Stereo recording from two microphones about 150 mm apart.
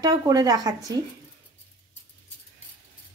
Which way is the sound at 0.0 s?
25° right (ahead or behind).